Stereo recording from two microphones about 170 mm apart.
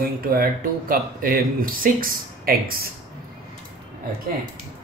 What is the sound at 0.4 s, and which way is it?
Speech, 55° right (ahead or behind).